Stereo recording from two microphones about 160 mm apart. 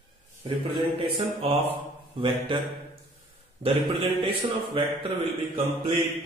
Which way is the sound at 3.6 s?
30° right (ahead or behind).